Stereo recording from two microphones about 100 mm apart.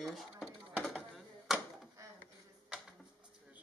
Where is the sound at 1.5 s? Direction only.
Centre (ahead or behind).